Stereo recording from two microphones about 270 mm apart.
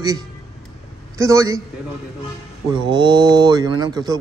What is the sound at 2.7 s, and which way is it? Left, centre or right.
A man's voice, centre.